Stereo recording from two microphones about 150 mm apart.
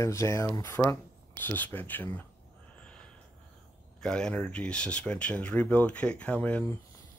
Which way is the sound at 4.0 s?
5° left (ahead or behind).